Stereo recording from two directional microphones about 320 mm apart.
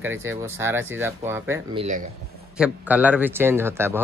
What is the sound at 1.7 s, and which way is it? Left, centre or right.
Speech, right.